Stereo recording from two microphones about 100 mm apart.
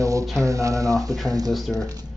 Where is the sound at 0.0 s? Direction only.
30° right (ahead or behind).